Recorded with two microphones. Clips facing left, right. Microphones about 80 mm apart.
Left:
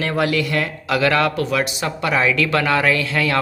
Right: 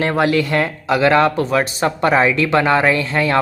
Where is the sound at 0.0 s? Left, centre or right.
Right.